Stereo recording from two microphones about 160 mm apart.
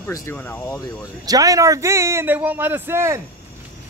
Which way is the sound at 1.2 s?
20° right (ahead or behind).